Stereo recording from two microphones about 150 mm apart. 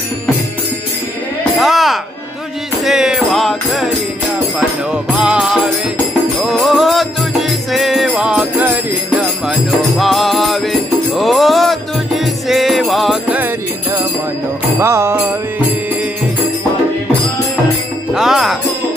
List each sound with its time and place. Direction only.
1.6 s a sound: centre (ahead or behind)
2.8 s music: 5° right (ahead or behind)
14.8 s music: 15° right (ahead or behind)
18.1 s music: 5° right (ahead or behind)